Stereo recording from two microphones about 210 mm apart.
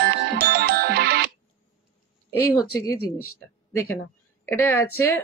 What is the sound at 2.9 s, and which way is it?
Speech, 90° left.